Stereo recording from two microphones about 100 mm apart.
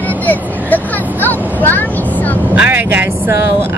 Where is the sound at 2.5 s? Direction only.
20° right (ahead or behind).